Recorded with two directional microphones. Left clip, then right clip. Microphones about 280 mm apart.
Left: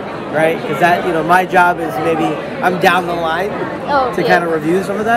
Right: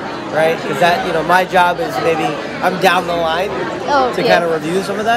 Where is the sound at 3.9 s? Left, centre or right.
Right.